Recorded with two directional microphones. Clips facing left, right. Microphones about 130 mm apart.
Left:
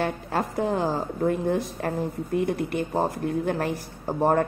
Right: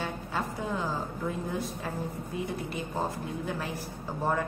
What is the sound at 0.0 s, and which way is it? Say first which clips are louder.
Speech: left 7 dB; 65° left (ahead or behind).